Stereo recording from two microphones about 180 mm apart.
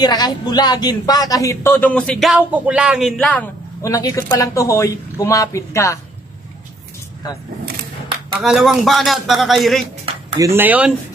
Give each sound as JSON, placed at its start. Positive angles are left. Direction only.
{"t": 0.0, "sound": "speech", "side_deg": 20}
{"t": 3.9, "sound": "speech", "side_deg": 20}
{"t": 8.4, "sound": "a man's voice", "side_deg": 0}
{"t": 10.4, "sound": "speech", "side_deg": -10}